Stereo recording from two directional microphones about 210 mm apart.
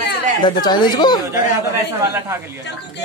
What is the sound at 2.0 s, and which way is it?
Speech, 15° right (ahead or behind).